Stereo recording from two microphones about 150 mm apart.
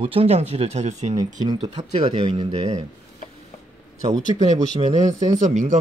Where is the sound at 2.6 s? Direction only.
50° right (ahead or behind).